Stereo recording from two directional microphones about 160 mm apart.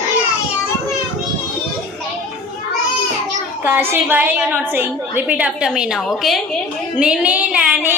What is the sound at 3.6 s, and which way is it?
A woman's voice, 10° right (ahead or behind).